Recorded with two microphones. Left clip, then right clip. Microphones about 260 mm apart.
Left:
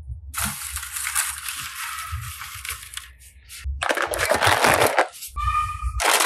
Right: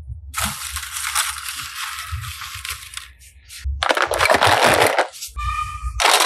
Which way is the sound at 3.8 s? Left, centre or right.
Centre.